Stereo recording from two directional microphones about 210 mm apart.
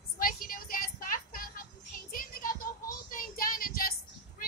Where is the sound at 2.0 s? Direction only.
45° left (ahead or behind).